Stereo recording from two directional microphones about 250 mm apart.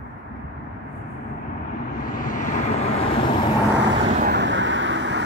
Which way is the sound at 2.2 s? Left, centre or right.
Left.